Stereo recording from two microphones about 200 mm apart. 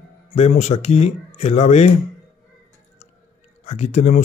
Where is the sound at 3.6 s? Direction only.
30° left (ahead or behind).